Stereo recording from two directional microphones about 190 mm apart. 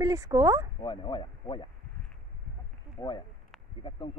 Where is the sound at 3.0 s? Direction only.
15° left (ahead or behind).